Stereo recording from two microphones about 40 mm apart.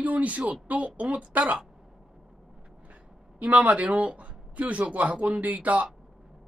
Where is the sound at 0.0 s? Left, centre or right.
Right.